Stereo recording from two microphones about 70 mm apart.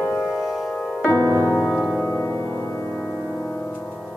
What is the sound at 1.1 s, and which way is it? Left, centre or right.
Music, right.